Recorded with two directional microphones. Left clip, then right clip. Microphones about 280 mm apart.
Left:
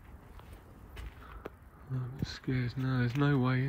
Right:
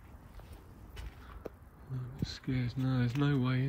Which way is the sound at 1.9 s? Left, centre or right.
Centre.